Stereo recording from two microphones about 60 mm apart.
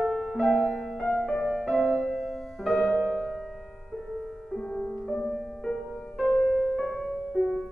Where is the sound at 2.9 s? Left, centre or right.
Left.